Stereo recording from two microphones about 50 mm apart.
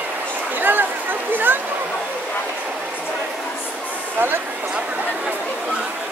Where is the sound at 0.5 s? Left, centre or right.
Right.